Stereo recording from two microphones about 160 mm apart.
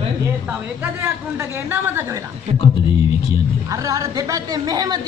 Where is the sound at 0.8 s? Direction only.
15° right (ahead or behind).